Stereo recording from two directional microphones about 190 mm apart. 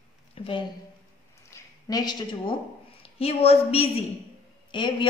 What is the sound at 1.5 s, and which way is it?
A woman's voice, 20° left (ahead or behind).